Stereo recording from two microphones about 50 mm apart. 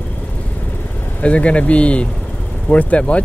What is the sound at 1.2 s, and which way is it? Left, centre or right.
Speech, left.